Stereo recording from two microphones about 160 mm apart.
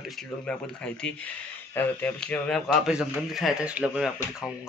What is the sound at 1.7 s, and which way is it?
Speech, 10° left (ahead or behind).